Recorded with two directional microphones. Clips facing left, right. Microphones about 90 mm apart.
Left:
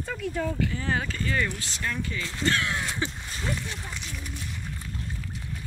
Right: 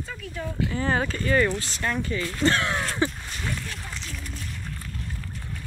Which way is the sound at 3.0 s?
35° right (ahead or behind).